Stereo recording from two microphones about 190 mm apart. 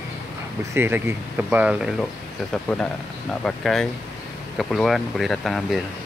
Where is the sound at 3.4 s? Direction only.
Centre (ahead or behind).